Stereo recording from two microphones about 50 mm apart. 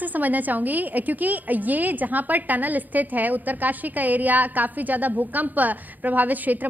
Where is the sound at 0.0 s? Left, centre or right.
Right.